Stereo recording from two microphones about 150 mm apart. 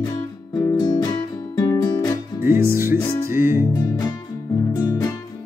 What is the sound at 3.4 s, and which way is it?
Music, 15° right (ahead or behind).